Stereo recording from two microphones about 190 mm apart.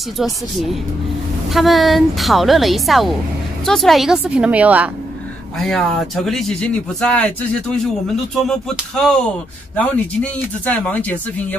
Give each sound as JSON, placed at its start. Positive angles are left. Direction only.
{"t": 1.5, "sound": "speech", "side_deg": 0}
{"t": 5.6, "sound": "speech", "side_deg": 5}
{"t": 8.5, "sound": "speech", "side_deg": 5}